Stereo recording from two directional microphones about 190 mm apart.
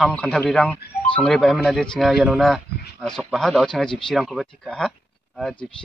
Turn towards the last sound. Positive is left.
turn(degrees=5)  # may be behind; listen again after turning